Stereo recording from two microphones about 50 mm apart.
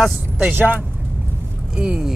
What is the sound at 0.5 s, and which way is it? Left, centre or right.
Speech, right.